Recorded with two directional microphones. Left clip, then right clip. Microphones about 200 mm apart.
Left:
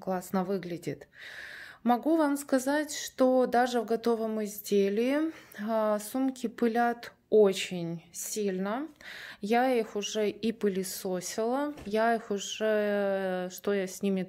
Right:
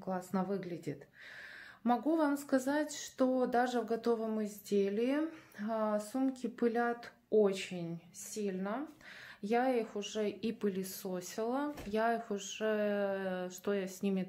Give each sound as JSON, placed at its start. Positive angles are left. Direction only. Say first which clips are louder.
{"t": 0.0, "sound": "speech", "louder": "left 6 dB", "side_deg": 50}